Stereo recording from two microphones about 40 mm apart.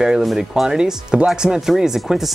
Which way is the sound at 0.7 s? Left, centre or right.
Centre.